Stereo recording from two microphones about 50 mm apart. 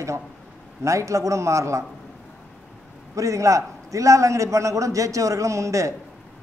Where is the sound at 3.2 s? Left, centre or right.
Right.